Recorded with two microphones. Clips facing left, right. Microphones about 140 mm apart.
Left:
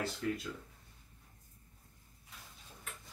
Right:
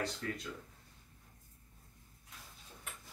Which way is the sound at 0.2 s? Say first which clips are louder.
Left 5 dB; centre (ahead or behind).